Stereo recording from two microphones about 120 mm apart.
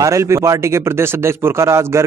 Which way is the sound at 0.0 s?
25° right (ahead or behind).